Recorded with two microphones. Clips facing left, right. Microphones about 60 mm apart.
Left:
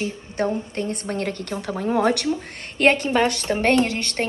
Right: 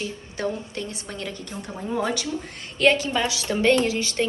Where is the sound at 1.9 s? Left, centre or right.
Left.